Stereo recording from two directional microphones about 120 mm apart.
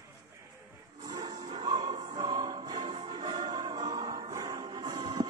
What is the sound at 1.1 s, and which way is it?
Music, 35° right (ahead or behind).